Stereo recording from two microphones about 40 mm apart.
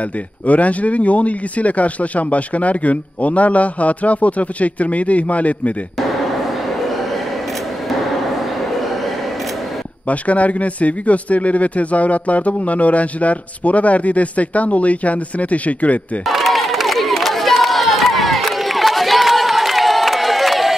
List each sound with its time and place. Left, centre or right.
0.5 s speech: left
10.0 s speech: left
16.3 s crowd: centre